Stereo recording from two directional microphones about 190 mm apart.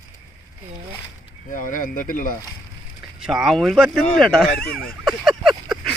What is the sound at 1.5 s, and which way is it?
Speech, 45° left (ahead or behind).